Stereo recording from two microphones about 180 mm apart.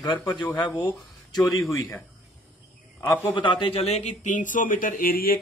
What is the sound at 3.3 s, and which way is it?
Speech, 25° left (ahead or behind).